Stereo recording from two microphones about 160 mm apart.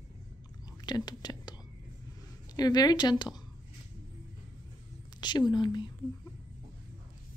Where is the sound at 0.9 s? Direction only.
25° left (ahead or behind).